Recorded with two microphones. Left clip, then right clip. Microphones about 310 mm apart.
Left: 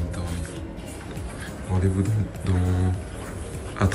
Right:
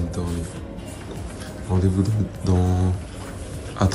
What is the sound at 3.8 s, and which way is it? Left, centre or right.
Speech, centre.